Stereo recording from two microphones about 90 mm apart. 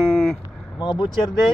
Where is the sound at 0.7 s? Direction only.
55° left (ahead or behind).